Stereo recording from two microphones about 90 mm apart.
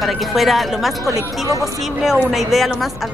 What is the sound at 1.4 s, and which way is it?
Speech, 40° right (ahead or behind).